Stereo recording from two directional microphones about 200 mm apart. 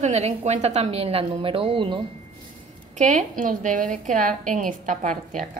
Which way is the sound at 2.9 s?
40° right (ahead or behind).